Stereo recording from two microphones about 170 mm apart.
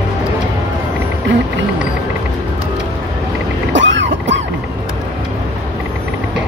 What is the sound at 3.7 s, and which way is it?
Boat, 90° right.